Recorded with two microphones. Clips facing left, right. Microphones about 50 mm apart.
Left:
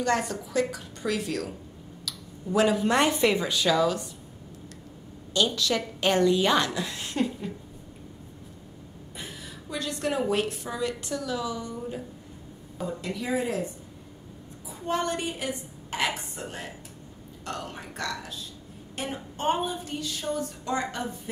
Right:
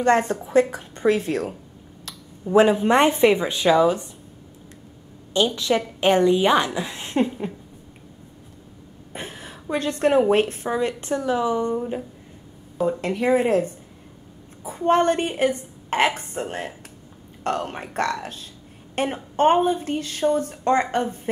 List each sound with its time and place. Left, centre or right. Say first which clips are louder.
0.0 s a woman's voice: right 7 dB; right
5.3 s a woman's voice: right 5 dB; right
9.1 s a woman's voice: right 6 dB; right